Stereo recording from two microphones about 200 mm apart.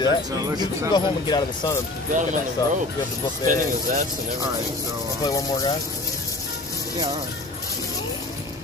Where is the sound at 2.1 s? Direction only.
40° right (ahead or behind).